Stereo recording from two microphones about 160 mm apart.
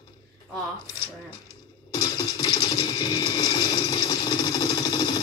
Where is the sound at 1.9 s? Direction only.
25° left (ahead or behind).